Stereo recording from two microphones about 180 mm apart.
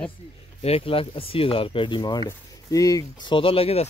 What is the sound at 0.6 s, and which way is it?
Speech, 30° left (ahead or behind).